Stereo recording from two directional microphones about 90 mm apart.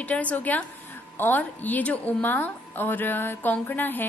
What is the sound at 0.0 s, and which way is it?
A woman's voice, 15° left (ahead or behind).